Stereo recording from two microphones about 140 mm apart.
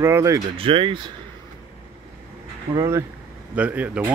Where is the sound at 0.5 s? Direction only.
40° right (ahead or behind).